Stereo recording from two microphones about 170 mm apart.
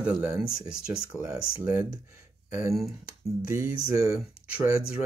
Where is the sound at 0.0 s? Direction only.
10° right (ahead or behind).